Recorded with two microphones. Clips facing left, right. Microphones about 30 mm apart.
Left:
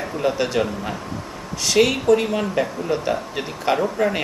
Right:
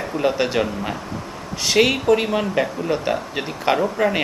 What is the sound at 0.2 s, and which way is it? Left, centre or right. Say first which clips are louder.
Speech: right 1 dB; centre.